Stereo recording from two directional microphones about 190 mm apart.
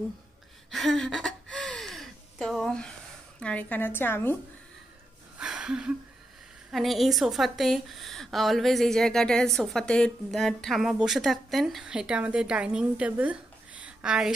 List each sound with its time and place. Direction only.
0.7 s gasp: centre (ahead or behind)
3.3 s a woman's voice: 5° left (ahead or behind)
5.4 s a sound: 5° right (ahead or behind)
6.7 s a woman's voice: centre (ahead or behind)